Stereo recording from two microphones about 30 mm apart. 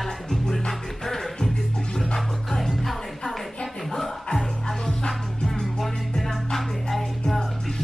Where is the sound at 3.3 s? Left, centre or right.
Centre.